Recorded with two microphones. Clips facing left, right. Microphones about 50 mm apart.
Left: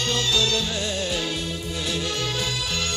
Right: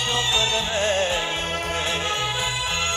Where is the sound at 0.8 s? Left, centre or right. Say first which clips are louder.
Right 6 dB; right.